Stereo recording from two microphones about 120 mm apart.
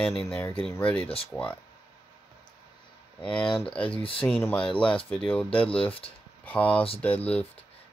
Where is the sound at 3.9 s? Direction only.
50° left (ahead or behind).